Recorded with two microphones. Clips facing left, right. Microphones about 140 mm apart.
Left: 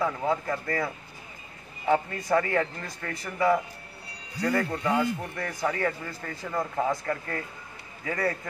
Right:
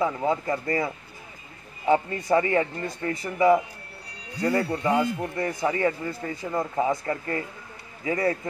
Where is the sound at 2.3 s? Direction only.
15° right (ahead or behind).